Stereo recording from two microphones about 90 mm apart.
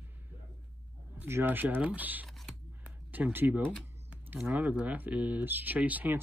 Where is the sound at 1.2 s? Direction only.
25° right (ahead or behind).